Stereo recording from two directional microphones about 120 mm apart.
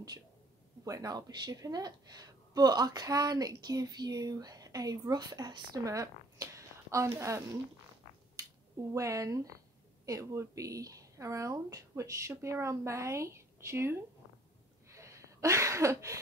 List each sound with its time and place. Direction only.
0.8 s a woman's voice: 30° right (ahead or behind)
8.9 s speech: 25° right (ahead or behind)
14.9 s a sound: 25° right (ahead or behind)